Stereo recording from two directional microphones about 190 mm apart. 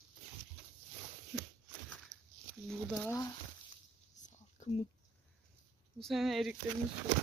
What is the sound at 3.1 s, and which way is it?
Speech, 20° left (ahead or behind).